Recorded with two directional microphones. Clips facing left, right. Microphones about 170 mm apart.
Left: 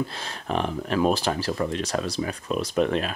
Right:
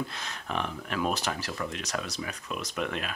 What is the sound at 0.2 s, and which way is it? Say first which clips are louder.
Speech: left 6 dB; 30° left (ahead or behind).